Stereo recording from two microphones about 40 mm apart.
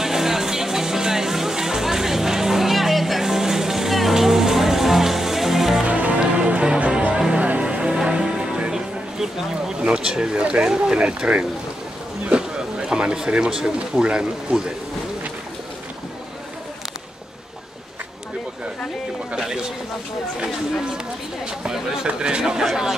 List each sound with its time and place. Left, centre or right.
0.0 s music: centre
5.9 s music: right
7.3 s music: right
7.6 s music: right
9.8 s speech: right
12.3 s a sound: right
13.9 s speech: right
19.3 s a sound: centre
22.0 s a sound: right